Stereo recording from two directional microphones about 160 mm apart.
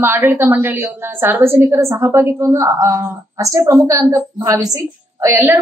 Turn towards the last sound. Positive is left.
turn(degrees=-15)  # may be behind; listen again after turning